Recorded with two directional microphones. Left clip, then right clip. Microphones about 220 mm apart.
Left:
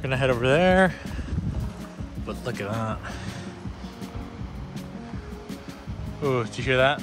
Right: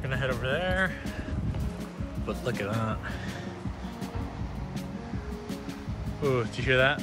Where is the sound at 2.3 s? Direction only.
10° left (ahead or behind).